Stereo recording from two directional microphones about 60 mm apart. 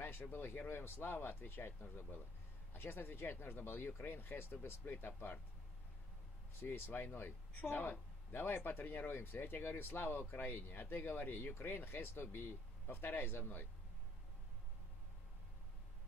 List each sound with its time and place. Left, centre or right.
0.0 s speech: left
6.6 s speech: left